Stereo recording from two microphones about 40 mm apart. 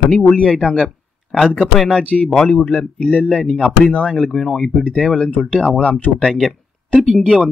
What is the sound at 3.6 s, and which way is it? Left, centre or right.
Speech, left.